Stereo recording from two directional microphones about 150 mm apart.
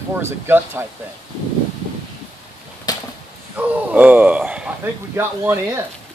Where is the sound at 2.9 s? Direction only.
25° left (ahead or behind).